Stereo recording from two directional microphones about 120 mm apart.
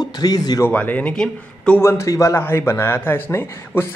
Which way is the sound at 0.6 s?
15° left (ahead or behind).